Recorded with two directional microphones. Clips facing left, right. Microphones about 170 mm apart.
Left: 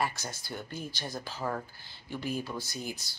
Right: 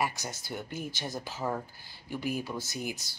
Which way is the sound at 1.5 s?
10° right (ahead or behind).